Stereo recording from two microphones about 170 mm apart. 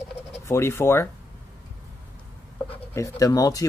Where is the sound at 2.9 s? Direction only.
20° left (ahead or behind).